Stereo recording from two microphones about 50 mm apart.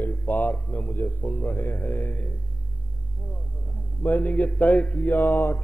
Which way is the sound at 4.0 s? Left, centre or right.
Left.